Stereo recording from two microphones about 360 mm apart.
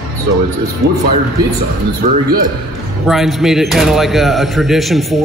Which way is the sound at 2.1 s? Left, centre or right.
Right.